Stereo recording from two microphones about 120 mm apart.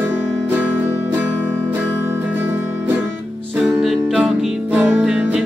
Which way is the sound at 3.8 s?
Centre (ahead or behind).